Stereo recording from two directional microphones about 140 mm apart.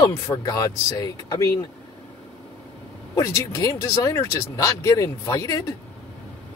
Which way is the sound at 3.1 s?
25° left (ahead or behind).